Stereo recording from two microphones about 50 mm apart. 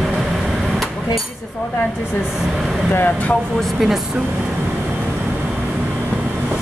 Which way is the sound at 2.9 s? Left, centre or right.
Left.